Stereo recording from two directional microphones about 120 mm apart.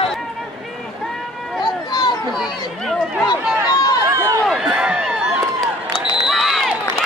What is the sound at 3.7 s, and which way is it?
Run, 30° left (ahead or behind).